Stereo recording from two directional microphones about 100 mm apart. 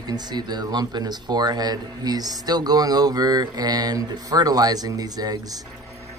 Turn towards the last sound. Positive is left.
turn(degrees=-40)  # may be behind; listen again after turning